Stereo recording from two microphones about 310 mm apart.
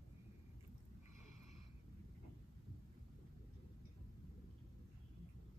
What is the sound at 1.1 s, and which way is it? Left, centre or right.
Wheeze, left.